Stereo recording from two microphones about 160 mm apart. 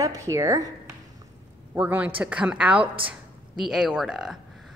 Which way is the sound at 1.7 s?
10° right (ahead or behind).